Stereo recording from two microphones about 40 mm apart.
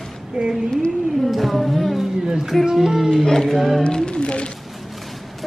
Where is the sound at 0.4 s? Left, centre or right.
Right.